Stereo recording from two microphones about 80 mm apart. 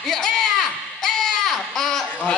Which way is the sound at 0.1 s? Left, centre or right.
Centre.